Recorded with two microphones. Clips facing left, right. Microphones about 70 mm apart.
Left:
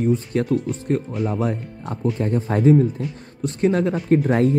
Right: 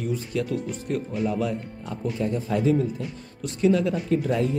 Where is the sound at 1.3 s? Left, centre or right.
Left.